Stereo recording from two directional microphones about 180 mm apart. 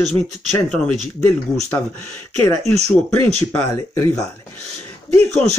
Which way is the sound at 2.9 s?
10° left (ahead or behind).